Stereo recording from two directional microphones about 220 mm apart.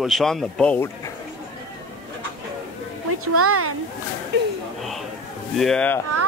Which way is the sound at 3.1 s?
90° right.